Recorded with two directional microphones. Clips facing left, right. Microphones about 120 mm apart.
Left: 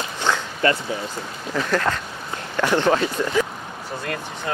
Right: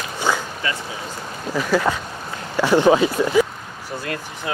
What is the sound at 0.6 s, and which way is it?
Speech, 55° left (ahead or behind).